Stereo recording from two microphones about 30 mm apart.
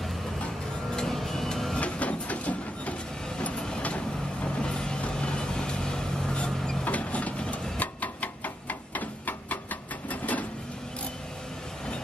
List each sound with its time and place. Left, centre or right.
0.9 s music: centre
1.8 s a sound: left
3.5 s vehicle: left
5.4 s vehicle: left
6.8 s vehicle: left
7.4 s printer: left
7.8 s hammer: left